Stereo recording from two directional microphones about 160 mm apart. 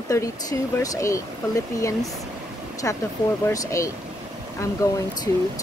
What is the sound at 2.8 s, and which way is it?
Speech, 15° left (ahead or behind).